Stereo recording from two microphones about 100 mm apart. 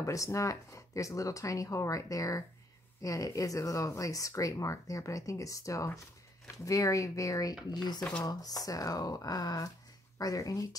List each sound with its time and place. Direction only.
0.0 s speech: 30° left (ahead or behind)
7.7 s speech: 45° left (ahead or behind)